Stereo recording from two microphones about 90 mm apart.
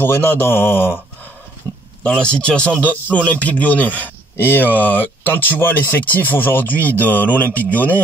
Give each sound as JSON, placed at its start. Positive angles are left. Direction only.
{"t": 0.0, "sound": "a man's voice", "side_deg": 25}
{"t": 2.0, "sound": "a man's voice", "side_deg": 10}